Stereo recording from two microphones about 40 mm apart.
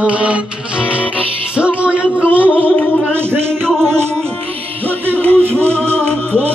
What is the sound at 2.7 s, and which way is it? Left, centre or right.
Music, left.